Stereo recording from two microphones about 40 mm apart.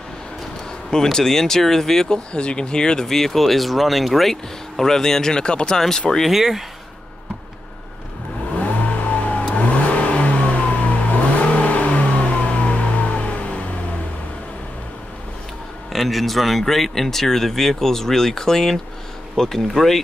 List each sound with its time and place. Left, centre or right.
1.1 s speech: centre
3.1 s speech: centre; by 5.8 s left
5.8 s speech: centre
6.3 s speech: centre
8.5 s vehicle: left
15.9 s speech: centre